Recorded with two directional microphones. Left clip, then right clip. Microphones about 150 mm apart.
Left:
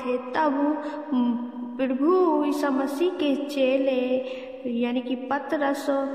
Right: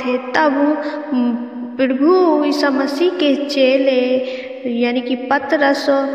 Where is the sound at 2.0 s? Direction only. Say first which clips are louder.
Right 8 dB; 35° right (ahead or behind).